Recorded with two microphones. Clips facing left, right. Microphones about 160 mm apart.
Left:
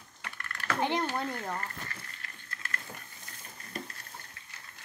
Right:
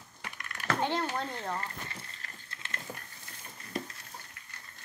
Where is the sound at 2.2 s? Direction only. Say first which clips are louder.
Left 2 dB; 25° right (ahead or behind).